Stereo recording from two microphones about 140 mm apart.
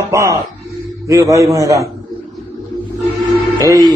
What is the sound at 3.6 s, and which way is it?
Speech, 25° right (ahead or behind).